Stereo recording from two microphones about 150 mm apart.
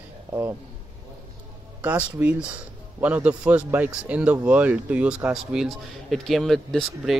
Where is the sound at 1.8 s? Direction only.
10° right (ahead or behind).